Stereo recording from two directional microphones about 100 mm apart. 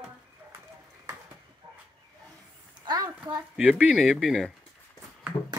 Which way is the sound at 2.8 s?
40° right (ahead or behind).